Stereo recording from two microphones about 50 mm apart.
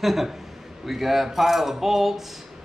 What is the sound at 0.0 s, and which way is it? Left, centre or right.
Speech, centre.